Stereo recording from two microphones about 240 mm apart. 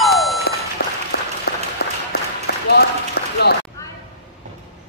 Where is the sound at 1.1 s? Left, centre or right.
Left.